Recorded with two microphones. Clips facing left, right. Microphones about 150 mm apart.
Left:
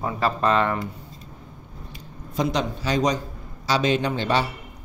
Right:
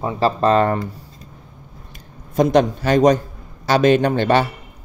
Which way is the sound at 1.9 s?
50° right (ahead or behind).